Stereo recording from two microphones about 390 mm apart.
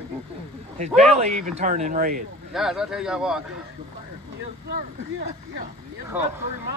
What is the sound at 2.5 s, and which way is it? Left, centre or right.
Speech, centre.